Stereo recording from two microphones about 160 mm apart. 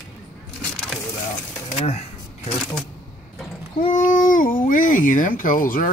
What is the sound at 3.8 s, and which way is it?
Speech, 50° left (ahead or behind).